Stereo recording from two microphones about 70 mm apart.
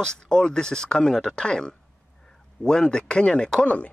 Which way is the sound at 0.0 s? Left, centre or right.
Centre.